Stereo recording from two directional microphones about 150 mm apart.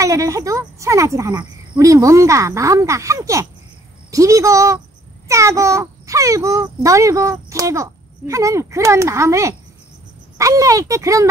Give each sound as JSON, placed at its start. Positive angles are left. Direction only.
{"t": 0.0, "sound": "a child's voice", "side_deg": -20}